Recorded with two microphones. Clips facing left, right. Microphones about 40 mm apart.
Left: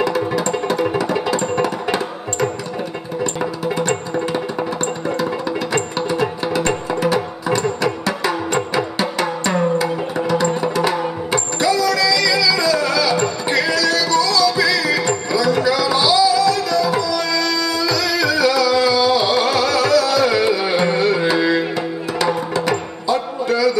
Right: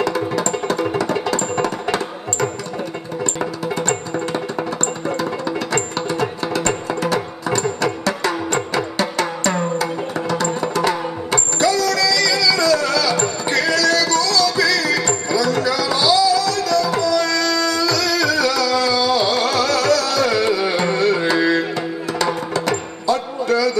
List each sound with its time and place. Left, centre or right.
0.0 s music: centre
3.3 s music: centre
5.2 s music: centre